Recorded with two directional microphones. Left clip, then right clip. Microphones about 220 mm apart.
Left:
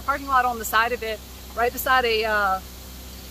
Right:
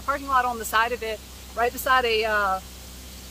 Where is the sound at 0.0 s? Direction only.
10° right (ahead or behind).